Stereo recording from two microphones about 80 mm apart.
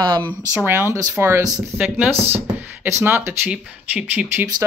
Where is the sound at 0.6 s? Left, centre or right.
Right.